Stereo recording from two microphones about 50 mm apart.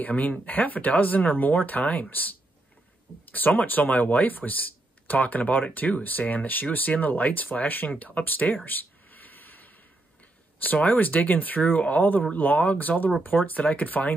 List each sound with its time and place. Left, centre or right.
0.0 s speech: left
8.6 s a sound: left
10.6 s speech: left